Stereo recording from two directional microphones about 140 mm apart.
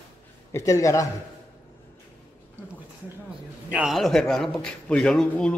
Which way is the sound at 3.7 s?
5° right (ahead or behind).